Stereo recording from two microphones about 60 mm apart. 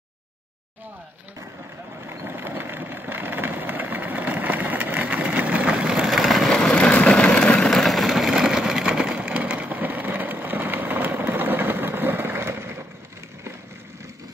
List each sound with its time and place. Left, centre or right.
2.0 s vehicle: right; by 6.0 s centre
6.0 s vehicle: centre
6.7 s vehicle: centre
7.7 s a sound: centre; by 12.8 s right